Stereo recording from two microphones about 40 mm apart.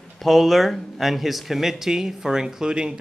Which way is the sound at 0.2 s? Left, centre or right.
Centre.